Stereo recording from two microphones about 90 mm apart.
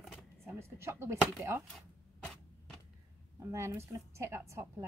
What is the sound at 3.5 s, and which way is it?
A woman's voice, 30° right (ahead or behind).